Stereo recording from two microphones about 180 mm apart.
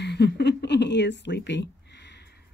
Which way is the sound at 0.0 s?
70° left (ahead or behind).